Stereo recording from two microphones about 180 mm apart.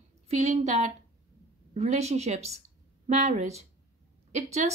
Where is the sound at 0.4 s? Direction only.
35° right (ahead or behind).